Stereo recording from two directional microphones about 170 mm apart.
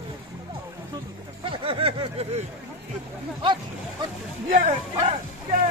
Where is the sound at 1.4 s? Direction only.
30° right (ahead or behind).